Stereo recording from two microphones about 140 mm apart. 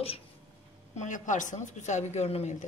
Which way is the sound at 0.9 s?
60° left (ahead or behind).